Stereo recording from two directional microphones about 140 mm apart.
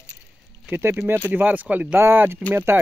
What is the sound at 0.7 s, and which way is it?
Speech, 15° right (ahead or behind).